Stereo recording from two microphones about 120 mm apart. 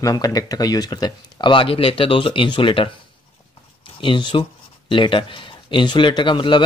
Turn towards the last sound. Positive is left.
turn(degrees=45)  # may be behind; listen again after turning